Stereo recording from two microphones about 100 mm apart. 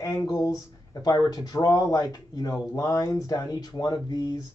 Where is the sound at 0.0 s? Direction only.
35° left (ahead or behind).